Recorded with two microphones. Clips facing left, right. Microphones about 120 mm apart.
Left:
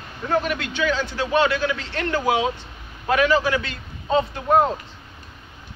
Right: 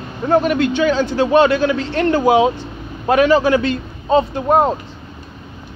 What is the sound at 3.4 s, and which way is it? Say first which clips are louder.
Speech: right 8 dB; 45° right (ahead or behind).